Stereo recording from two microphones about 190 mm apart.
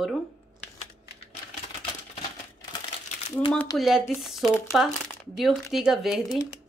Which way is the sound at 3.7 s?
Centre (ahead or behind).